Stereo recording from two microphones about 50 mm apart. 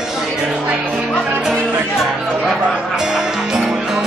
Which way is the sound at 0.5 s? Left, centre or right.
Right.